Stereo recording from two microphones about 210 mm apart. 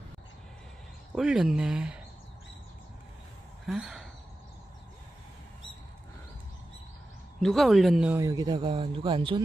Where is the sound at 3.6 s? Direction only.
Centre (ahead or behind).